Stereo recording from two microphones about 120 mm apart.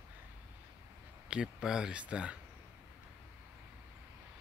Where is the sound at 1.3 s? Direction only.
5° right (ahead or behind).